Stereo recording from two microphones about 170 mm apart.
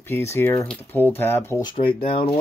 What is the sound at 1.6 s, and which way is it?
Speech, 35° left (ahead or behind).